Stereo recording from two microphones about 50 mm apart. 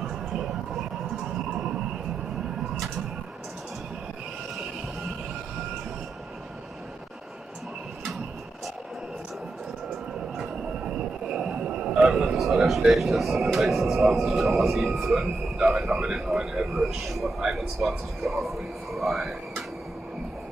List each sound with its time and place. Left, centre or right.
0.0 s vehicle: centre
10.8 s a sound: centre
12.4 s a man's voice: centre
16.6 s a man's voice: centre